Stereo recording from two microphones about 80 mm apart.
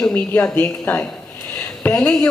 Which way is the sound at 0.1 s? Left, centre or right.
Left.